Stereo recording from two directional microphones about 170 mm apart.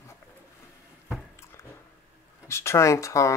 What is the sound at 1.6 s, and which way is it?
Biting, 15° left (ahead or behind).